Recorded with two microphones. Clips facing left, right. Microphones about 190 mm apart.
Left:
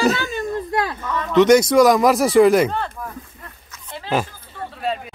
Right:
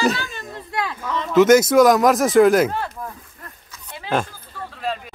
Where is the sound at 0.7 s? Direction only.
40° left (ahead or behind).